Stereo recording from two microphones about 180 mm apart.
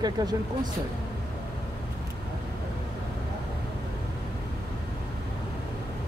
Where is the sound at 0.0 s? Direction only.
20° right (ahead or behind).